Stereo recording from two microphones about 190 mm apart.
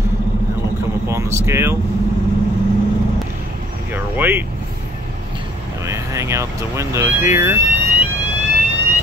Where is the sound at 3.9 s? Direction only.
10° right (ahead or behind).